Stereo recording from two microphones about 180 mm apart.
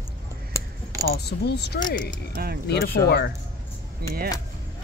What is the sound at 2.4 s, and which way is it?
Speech, 60° right (ahead or behind).